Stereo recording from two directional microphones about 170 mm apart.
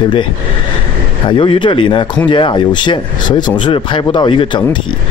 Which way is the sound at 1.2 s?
30° left (ahead or behind).